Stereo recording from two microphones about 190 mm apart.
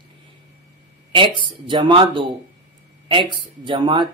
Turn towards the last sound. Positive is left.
turn(degrees=-25)  # may be behind; listen again after turning